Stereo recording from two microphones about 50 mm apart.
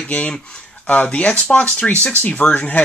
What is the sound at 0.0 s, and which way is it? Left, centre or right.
Speech, left.